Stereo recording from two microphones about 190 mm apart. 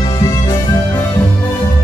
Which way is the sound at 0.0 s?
20° left (ahead or behind).